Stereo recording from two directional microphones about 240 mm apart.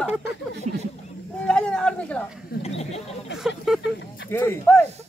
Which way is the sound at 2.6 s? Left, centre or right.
Left.